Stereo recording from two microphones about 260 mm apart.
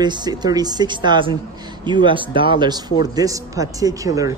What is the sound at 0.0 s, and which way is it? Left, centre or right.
Speech, centre.